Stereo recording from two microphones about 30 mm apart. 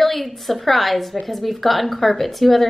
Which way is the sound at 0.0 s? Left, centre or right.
Centre.